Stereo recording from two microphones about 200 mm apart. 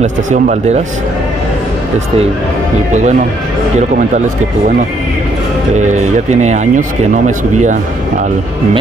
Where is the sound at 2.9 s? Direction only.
35° right (ahead or behind).